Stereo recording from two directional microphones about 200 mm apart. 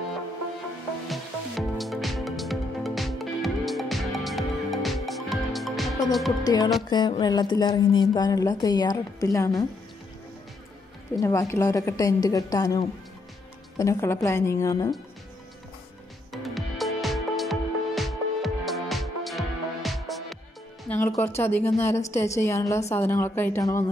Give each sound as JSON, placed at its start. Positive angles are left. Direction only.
{"t": 1.0, "sound": "music", "side_deg": 0}
{"t": 6.4, "sound": "a woman's voice", "side_deg": 20}
{"t": 11.1, "sound": "a woman's voice", "side_deg": 15}
{"t": 16.3, "sound": "music", "side_deg": 0}
{"t": 20.9, "sound": "a woman's voice", "side_deg": 10}